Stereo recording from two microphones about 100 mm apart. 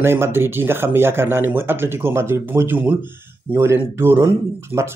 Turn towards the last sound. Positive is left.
turn(degrees=-25)  # may be behind; listen again after turning